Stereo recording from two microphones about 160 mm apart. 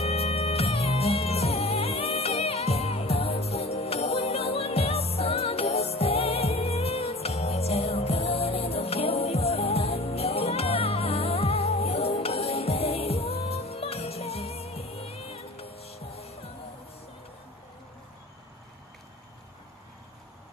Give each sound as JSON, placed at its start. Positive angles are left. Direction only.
{"t": 0.0, "sound": "music", "side_deg": 40}